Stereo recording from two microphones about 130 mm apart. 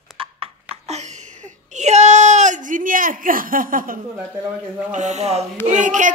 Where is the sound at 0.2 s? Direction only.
40° right (ahead or behind).